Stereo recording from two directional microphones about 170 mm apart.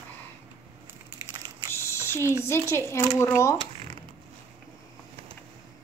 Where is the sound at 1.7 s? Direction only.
15° left (ahead or behind).